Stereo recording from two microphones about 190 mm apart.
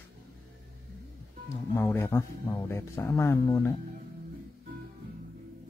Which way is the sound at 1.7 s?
10° left (ahead or behind).